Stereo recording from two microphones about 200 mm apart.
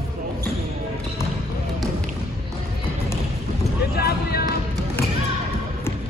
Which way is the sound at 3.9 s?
50° left (ahead or behind).